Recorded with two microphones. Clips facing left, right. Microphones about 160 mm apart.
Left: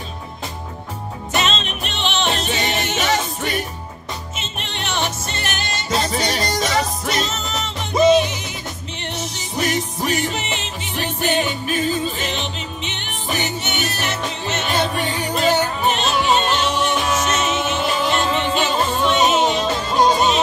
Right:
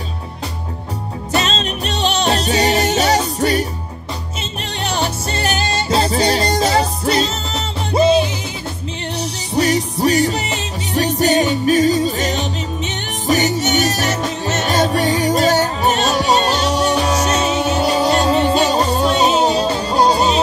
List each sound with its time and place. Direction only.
1.3 s music: 35° right (ahead or behind)